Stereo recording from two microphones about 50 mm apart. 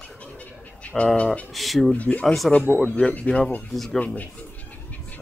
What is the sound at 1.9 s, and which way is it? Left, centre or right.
Speech, left.